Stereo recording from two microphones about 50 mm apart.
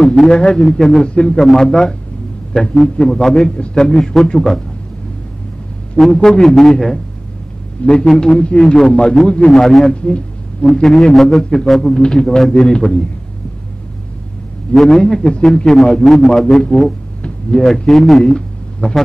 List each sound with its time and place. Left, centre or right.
0.0 s a man's voice: centre
1.0 s speech: centre
1.3 s a man's voice: centre
3.5 s a man's voice: centre
6.1 s a man's voice: centre
6.4 s a man's voice: centre
7.8 s a man's voice: centre
8.5 s a man's voice: centre
9.8 s speech: left
10.7 s a man's voice: centre
14.8 s a man's voice: centre
18.2 s speech: centre